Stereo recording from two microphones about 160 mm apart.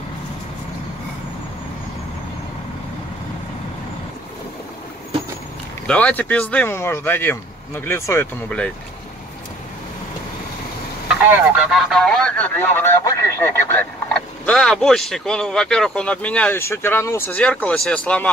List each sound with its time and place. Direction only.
5.9 s speech: 10° left (ahead or behind)
11.2 s speech: 10° right (ahead or behind); by 18.3 s 10° left (ahead or behind)